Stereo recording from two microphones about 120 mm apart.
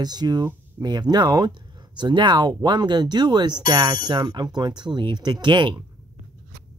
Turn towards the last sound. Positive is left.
turn(degrees=-40)  # may be behind; listen again after turning